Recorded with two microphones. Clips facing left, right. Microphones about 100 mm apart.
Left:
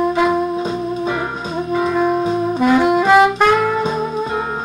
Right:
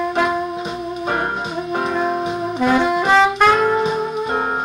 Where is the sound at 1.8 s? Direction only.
20° right (ahead or behind).